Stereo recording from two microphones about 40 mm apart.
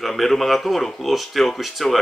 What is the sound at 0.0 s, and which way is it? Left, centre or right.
Speech, centre.